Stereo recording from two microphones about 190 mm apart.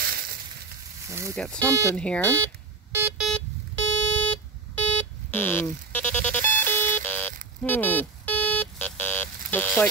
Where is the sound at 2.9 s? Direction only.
10° right (ahead or behind).